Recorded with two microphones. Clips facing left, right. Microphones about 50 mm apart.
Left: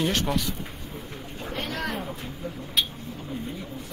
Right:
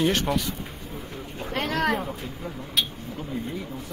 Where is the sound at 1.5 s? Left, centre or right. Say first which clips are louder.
Right 6 dB; right.